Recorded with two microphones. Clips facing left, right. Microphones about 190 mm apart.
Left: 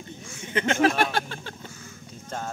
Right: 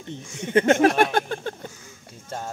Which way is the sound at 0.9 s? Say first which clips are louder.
Right 5 dB; 50° right (ahead or behind).